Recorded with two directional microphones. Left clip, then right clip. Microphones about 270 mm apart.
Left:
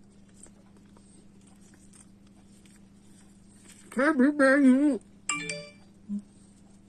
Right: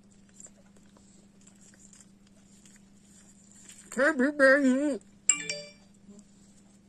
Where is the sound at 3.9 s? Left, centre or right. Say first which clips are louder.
Left 1 dB; centre.